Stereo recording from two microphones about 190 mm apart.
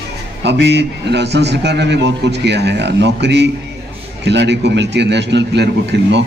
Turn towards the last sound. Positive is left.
turn(degrees=-65)  # may be behind; listen again after turning